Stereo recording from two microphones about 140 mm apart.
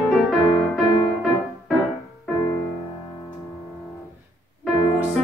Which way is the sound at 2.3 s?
25° left (ahead or behind).